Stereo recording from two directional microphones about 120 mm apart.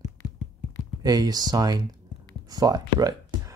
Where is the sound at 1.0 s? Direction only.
35° right (ahead or behind).